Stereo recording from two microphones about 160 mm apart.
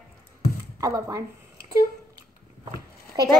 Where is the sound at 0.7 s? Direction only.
20° right (ahead or behind).